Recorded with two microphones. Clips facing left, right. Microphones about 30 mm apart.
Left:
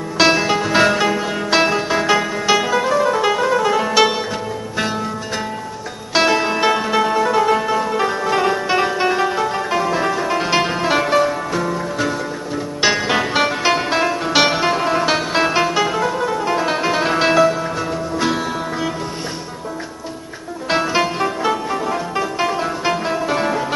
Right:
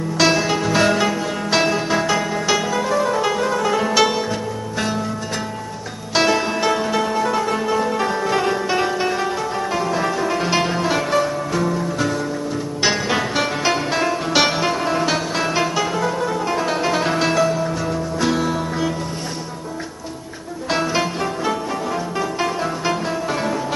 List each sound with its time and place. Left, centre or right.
0.2 s music: centre
6.1 s music: centre
20.6 s music: centre